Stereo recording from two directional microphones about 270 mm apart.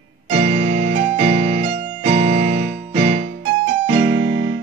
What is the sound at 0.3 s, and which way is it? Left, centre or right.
Keyboard, right.